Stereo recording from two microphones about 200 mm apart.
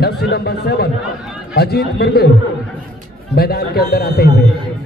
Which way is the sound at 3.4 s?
50° left (ahead or behind).